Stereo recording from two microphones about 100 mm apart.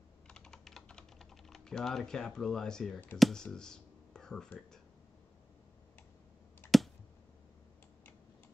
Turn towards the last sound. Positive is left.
turn(degrees=20)  # may be behind; listen again after turning